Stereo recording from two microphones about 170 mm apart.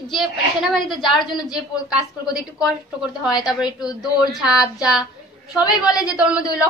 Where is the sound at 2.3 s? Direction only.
5° right (ahead or behind).